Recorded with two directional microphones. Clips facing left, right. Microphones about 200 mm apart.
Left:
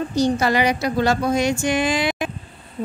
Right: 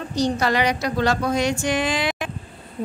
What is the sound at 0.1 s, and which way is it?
A woman's voice, 5° left (ahead or behind).